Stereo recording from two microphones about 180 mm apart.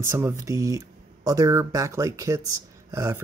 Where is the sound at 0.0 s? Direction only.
15° right (ahead or behind).